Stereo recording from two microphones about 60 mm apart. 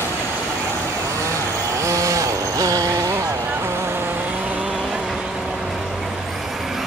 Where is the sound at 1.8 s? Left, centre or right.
Right.